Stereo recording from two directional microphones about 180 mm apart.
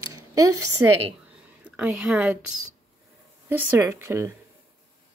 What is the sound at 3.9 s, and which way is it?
Speech, 15° right (ahead or behind).